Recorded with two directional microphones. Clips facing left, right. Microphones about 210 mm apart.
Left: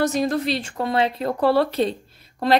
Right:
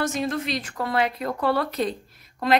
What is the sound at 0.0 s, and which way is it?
Speech, 35° left (ahead or behind).